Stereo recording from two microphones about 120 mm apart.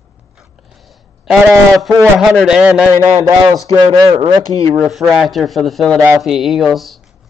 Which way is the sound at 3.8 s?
40° right (ahead or behind).